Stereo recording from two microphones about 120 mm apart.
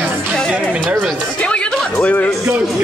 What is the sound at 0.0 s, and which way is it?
Music, 5° left (ahead or behind).